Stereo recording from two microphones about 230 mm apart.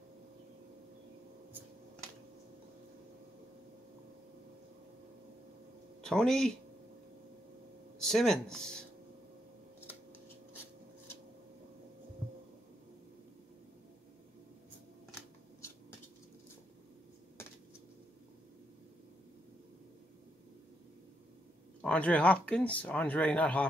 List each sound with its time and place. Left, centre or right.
6.0 s speech: centre
8.0 s speech: centre
21.8 s speech: centre